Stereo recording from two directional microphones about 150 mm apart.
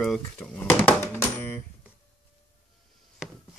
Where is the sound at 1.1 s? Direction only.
15° left (ahead or behind).